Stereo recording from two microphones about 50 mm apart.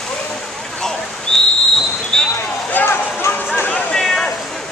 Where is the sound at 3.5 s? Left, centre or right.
Left.